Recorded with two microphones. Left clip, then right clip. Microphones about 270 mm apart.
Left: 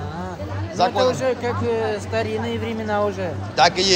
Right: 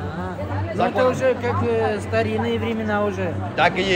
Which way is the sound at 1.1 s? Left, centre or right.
Left.